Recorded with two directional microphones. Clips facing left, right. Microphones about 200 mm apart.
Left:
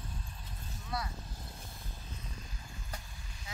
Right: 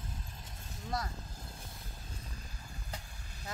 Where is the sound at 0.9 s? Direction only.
45° right (ahead or behind).